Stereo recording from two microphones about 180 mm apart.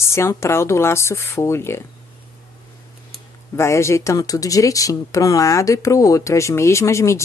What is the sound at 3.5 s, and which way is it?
A woman's voice, 15° left (ahead or behind).